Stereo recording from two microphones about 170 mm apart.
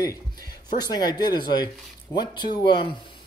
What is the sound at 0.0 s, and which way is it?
Speech, 20° left (ahead or behind).